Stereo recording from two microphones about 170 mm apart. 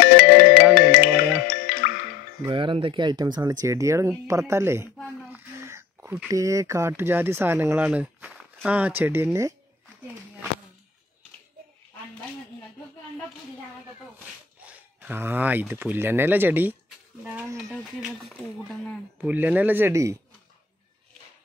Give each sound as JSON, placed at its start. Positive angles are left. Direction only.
{"t": 0.0, "sound": "music", "side_deg": 60}
{"t": 2.4, "sound": "speech", "side_deg": -30}
{"t": 5.3, "sound": "a sound", "side_deg": -15}
{"t": 6.3, "sound": "speech", "side_deg": -20}
{"t": 14.6, "sound": "speech", "side_deg": -10}
{"t": 17.2, "sound": "a sound", "side_deg": -10}
{"t": 17.6, "sound": "speech", "side_deg": 0}
{"t": 19.2, "sound": "speech", "side_deg": -10}